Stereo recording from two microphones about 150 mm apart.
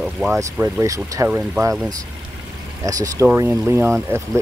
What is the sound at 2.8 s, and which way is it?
Speech, 25° right (ahead or behind).